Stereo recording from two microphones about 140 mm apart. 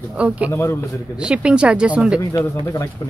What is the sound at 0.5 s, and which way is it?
Speech, 20° left (ahead or behind).